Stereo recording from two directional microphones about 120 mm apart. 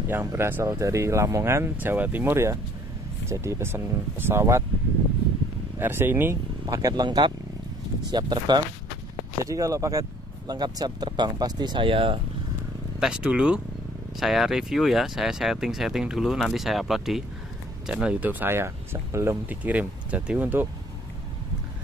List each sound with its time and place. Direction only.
0.1 s speech: 20° right (ahead or behind)
5.8 s speech: 15° right (ahead or behind)
6.7 s speech: 30° right (ahead or behind); by 12.2 s 45° right (ahead or behind)
13.0 s speech: 5° right (ahead or behind)